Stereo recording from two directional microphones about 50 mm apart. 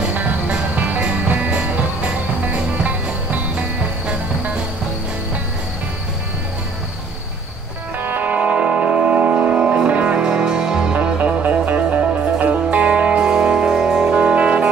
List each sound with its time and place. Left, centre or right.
1.0 s music: right
8.0 s music: right; by 14.1 s centre
14.1 s music: right